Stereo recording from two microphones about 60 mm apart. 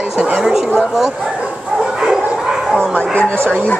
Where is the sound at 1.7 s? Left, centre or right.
Centre.